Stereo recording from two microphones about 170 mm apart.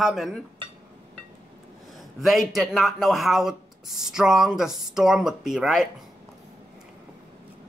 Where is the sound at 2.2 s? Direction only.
Centre (ahead or behind).